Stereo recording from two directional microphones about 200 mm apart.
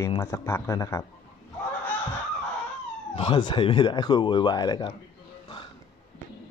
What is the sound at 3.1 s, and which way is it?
Speech, 25° left (ahead or behind).